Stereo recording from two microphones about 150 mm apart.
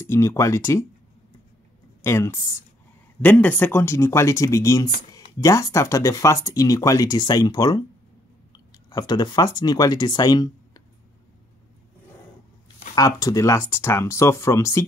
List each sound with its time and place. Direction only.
0.0 s speech: 15° left (ahead or behind)
2.0 s speech: 20° left (ahead or behind)
3.2 s speech: 10° left (ahead or behind); by 7.8 s 25° left (ahead or behind)
8.9 s speech: 25° left (ahead or behind)
12.9 s speech: 25° left (ahead or behind)